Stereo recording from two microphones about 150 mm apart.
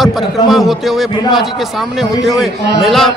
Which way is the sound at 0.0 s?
Centre (ahead or behind).